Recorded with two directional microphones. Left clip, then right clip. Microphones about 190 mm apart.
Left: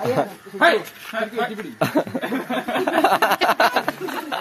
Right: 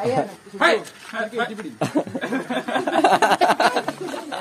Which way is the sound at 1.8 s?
10° left (ahead or behind).